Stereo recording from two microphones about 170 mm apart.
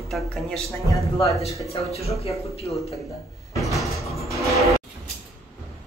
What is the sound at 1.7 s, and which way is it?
Speech, 35° left (ahead or behind).